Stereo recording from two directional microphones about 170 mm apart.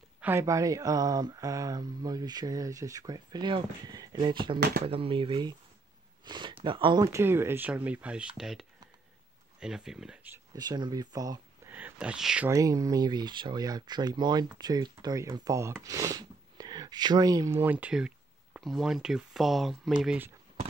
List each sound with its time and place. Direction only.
0.2 s speech: 15° right (ahead or behind)
4.6 s speech: 70° right (ahead or behind)
4.8 s speech: 35° right (ahead or behind)
6.2 s a sound: 25° right (ahead or behind)
6.6 s speech: 30° right (ahead or behind)
7.1 s speech: 15° right (ahead or behind)
10.5 s speech: 25° right (ahead or behind)
11.7 s speech: 5° right (ahead or behind)
12.4 s speech: 20° right (ahead or behind)